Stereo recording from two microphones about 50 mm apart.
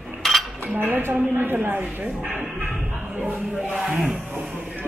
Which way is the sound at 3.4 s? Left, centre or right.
Centre.